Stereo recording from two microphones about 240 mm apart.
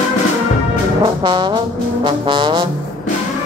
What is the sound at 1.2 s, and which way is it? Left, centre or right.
Brass instrument, centre.